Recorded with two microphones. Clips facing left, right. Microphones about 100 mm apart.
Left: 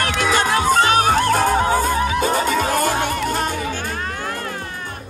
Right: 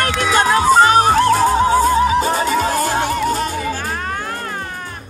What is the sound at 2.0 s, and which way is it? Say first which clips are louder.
Music: right 5 dB; 30° right (ahead or behind).